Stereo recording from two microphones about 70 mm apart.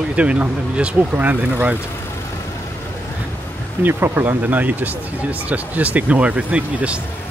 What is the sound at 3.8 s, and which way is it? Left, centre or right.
Speech, right.